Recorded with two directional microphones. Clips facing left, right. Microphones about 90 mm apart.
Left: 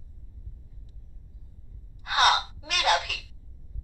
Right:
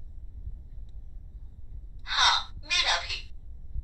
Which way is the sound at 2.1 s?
55° left (ahead or behind).